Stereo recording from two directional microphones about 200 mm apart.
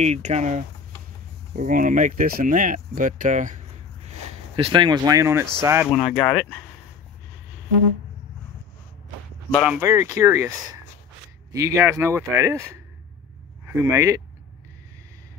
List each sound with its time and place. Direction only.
0.0 s speech: 35° right (ahead or behind); by 5.9 s 15° right (ahead or behind)
6.1 s speech: 10° left (ahead or behind)
9.5 s speech: 5° right (ahead or behind)
13.8 s speech: 15° right (ahead or behind)